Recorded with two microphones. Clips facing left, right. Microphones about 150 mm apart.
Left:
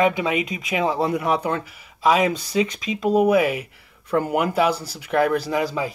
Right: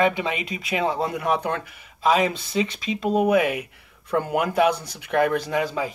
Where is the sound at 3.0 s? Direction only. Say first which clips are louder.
Left 2 dB; 5° left (ahead or behind).